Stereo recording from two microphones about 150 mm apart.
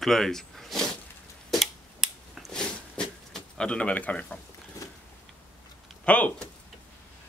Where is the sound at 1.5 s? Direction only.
Centre (ahead or behind).